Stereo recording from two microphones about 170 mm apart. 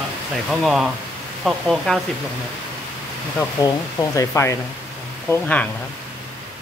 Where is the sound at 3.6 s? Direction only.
20° left (ahead or behind).